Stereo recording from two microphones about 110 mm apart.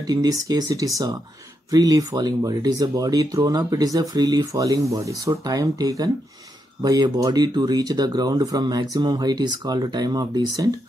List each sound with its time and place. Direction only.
0.0 s speech: 35° right (ahead or behind)